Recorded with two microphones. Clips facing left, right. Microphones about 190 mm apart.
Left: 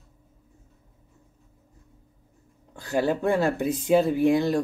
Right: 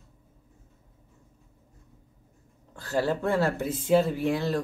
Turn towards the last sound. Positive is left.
turn(degrees=15)  # may be behind; listen again after turning